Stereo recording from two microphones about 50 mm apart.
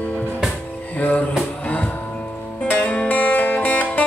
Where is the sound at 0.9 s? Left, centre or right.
Left.